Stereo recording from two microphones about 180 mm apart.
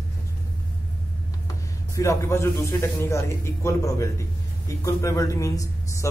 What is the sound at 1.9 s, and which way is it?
Speech, 15° left (ahead or behind).